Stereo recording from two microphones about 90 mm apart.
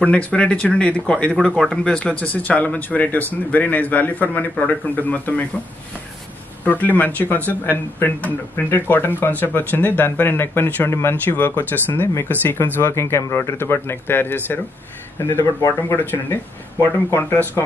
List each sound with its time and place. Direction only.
0.0 s speech: 15° left (ahead or behind)
6.6 s speech: 20° left (ahead or behind)